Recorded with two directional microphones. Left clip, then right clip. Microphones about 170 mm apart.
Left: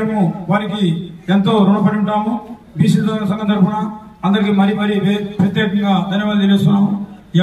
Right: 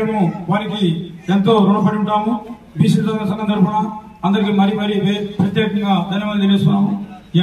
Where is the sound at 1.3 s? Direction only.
Centre (ahead or behind).